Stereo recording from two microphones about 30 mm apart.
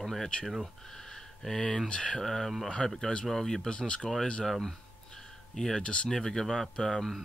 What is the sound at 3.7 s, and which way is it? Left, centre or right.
Speech, left.